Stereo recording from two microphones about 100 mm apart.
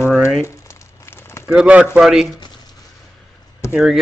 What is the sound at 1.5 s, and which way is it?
Speech, 10° right (ahead or behind).